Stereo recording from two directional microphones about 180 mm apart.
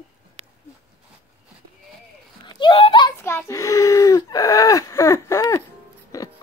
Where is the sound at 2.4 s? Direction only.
25° left (ahead or behind).